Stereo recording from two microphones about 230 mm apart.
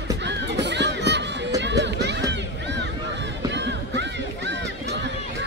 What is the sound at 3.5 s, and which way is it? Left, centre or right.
Run, right.